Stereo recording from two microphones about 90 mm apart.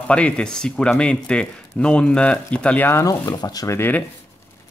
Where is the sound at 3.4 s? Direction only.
45° left (ahead or behind).